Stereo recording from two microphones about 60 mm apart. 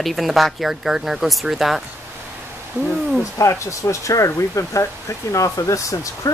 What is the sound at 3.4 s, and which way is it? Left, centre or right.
Speech, left.